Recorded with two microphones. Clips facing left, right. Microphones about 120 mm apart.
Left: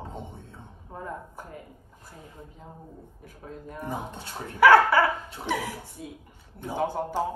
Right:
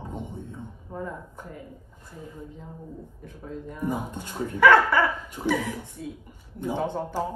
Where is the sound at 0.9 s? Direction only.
10° left (ahead or behind).